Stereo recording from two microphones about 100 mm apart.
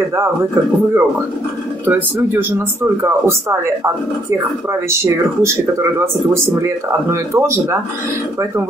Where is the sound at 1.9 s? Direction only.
15° right (ahead or behind).